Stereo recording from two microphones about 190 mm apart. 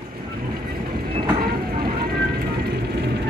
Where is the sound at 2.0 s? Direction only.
55° right (ahead or behind).